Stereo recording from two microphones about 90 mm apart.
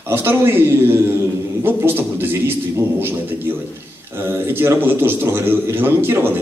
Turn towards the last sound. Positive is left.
turn(degrees=-25)  # may be behind; listen again after turning